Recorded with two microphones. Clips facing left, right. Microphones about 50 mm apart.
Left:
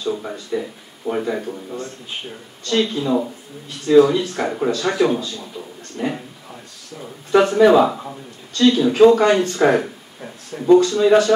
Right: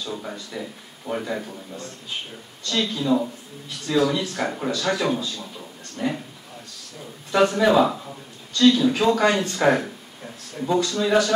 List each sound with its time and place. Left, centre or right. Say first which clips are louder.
0.1 s speech: left 11 dB; centre
2.6 s speech: left 5 dB; left
4.6 s speech: left 6 dB; left
6.0 s speech: left 2 dB; centre
7.5 s speech: left 5 dB; centre
9.6 s speech: left 1 dB; centre
10.5 s speech: left 10 dB; left